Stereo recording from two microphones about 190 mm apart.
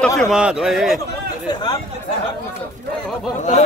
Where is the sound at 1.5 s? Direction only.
20° left (ahead or behind).